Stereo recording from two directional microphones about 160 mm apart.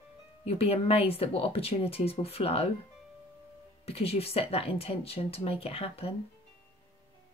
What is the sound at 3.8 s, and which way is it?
Speech, 40° left (ahead or behind).